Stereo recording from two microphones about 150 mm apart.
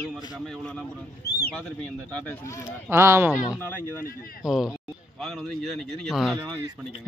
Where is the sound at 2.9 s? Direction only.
15° right (ahead or behind).